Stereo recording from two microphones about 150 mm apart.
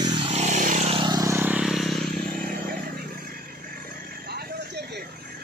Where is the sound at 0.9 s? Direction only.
30° right (ahead or behind); by 2.0 s centre (ahead or behind).